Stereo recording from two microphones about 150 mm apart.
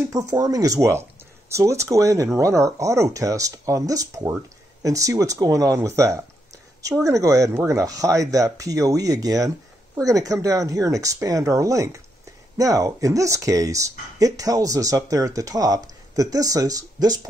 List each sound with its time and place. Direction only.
0.1 s speech: 25° right (ahead or behind)